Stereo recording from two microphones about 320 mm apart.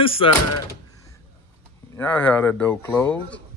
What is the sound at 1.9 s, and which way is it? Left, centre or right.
Speech, centre.